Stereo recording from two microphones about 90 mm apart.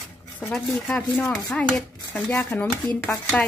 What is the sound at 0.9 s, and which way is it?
A child's voice, 20° left (ahead or behind).